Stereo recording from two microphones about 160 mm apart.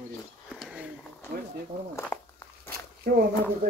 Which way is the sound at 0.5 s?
Centre (ahead or behind).